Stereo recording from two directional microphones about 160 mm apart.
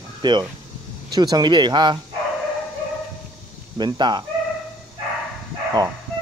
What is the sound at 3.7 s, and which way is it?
Speech, 30° right (ahead or behind).